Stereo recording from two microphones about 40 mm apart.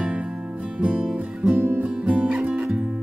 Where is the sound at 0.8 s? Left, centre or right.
Right.